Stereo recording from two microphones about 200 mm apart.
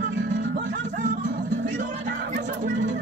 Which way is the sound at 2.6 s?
40° right (ahead or behind).